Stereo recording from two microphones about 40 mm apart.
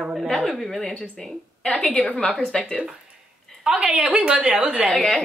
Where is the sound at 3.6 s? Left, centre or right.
Right.